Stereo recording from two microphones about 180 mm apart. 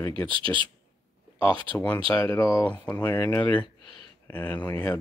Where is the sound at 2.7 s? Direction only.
10° left (ahead or behind).